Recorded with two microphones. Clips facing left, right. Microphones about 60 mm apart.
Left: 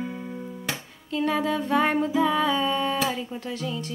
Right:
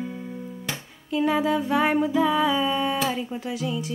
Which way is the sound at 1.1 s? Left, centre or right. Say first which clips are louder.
Right 2 dB; centre.